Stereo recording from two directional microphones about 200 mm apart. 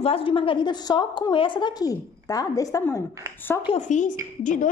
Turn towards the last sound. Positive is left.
turn(degrees=40)  # may be behind; listen again after turning